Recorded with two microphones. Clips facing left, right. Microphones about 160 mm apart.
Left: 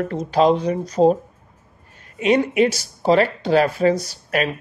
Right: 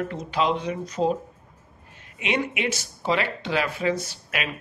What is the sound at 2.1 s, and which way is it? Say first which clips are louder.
Speech: left 10 dB; 40° left (ahead or behind).